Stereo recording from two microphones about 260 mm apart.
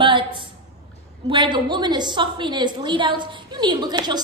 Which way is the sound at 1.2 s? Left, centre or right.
Centre.